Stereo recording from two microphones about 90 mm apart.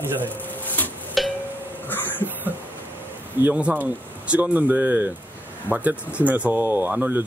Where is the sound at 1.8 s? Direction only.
20° left (ahead or behind).